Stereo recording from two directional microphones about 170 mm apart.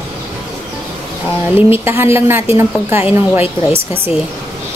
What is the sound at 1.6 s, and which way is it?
A woman's voice, 15° right (ahead or behind).